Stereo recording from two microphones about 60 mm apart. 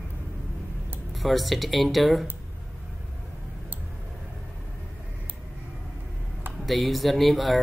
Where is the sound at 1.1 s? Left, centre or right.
Centre.